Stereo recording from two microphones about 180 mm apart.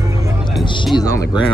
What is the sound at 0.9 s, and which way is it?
Speech, 5° right (ahead or behind).